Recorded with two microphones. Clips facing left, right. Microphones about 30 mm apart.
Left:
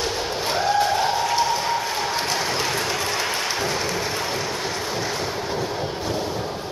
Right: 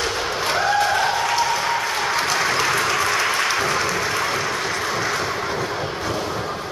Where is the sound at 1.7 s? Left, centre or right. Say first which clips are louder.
Right 2 dB; centre.